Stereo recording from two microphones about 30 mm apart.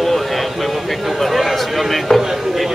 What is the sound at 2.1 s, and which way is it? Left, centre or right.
Speech, centre.